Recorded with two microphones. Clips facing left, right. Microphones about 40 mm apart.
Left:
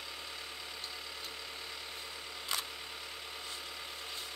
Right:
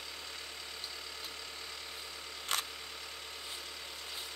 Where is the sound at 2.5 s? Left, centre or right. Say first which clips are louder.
Right 2 dB; right.